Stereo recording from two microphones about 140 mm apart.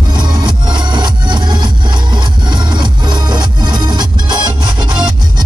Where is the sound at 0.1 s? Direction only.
30° right (ahead or behind).